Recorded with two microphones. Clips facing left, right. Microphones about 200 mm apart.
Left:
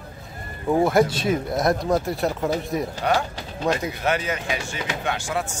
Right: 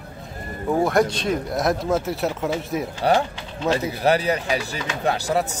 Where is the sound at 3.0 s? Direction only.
35° right (ahead or behind).